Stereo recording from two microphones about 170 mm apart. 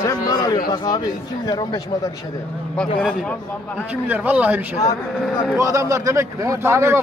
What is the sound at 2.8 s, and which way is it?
Speech, 5° left (ahead or behind).